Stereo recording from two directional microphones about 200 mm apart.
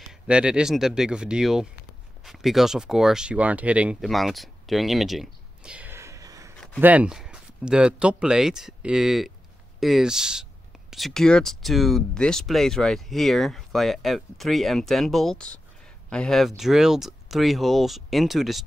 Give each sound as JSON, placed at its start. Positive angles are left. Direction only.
{"t": 0.3, "sound": "speech", "side_deg": -5}